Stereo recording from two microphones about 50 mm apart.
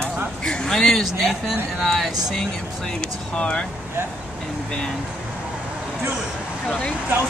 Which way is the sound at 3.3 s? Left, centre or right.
Centre.